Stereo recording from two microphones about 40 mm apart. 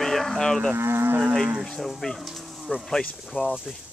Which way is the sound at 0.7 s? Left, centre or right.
Right.